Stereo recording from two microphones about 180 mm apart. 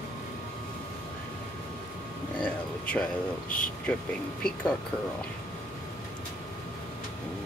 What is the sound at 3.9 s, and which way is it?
Speech, 5° left (ahead or behind).